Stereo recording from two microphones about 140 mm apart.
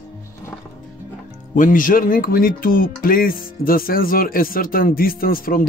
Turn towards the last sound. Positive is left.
turn(degrees=90)